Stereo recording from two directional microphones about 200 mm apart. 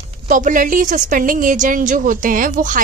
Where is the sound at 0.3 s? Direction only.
40° right (ahead or behind).